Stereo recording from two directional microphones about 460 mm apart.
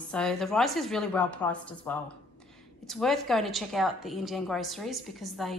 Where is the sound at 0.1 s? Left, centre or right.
Centre.